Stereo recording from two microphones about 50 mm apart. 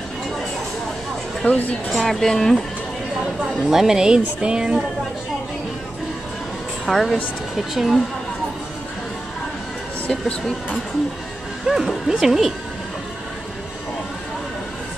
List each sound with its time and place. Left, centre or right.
1.4 s speech: left
1.9 s speech: centre
3.6 s speech: centre
6.9 s speech: centre
11.6 s speech: centre